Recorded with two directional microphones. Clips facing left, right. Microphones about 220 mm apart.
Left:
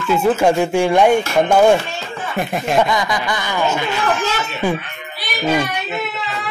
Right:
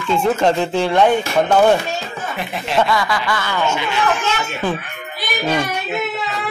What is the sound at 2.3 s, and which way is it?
Speech, 45° left (ahead or behind).